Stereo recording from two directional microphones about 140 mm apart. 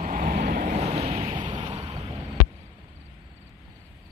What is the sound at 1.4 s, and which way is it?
Vehicle, 35° right (ahead or behind).